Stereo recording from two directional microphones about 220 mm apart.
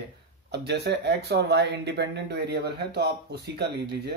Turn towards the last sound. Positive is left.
turn(degrees=-50)  # may be behind; listen again after turning